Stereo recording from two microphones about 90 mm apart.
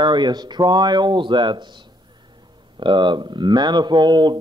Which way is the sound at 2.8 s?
60° right (ahead or behind).